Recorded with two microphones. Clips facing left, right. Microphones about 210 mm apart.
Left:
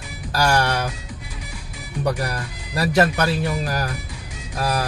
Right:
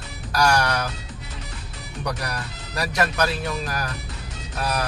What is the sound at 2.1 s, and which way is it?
Speech, 30° left (ahead or behind).